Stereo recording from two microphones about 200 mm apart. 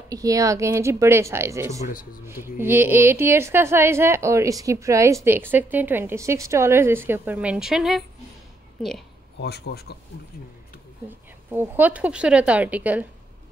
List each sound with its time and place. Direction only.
0.1 s a woman's voice: 15° right (ahead or behind)
9.4 s a man's voice: 55° left (ahead or behind)
11.1 s a woman's voice: 10° right (ahead or behind)